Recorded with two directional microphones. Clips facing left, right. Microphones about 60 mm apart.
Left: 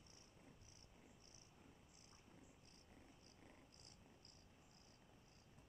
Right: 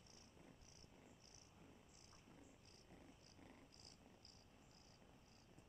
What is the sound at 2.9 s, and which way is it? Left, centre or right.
Purr, centre.